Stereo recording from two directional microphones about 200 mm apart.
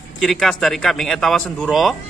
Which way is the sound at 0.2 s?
Centre (ahead or behind).